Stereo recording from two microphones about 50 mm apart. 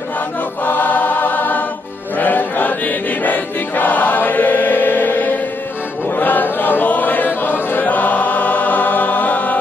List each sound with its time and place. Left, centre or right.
0.7 s choir: left
6.0 s chant: left